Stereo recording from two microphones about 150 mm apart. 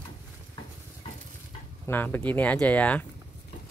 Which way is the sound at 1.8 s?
15° left (ahead or behind).